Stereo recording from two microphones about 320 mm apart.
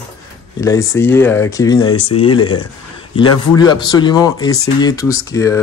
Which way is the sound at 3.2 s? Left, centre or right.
Centre.